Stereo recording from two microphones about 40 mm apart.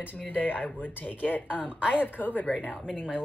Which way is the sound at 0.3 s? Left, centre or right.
Left.